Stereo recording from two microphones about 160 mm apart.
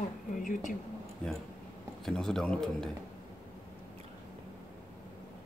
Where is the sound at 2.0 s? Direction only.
5° left (ahead or behind).